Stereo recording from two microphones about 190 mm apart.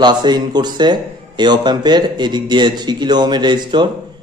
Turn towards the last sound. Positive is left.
turn(degrees=-25)  # may be behind; listen again after turning